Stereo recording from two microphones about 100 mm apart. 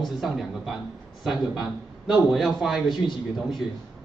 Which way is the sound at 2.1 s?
5° right (ahead or behind).